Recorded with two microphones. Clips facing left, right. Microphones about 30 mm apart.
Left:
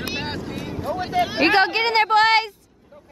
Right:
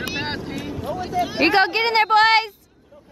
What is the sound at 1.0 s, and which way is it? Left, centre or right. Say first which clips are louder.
Speech: left 2 dB; left.